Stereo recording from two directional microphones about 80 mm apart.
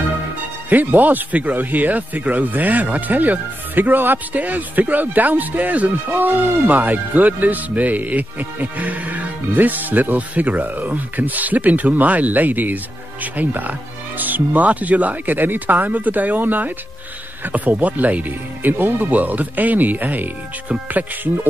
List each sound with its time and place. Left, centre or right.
0.7 s speech: right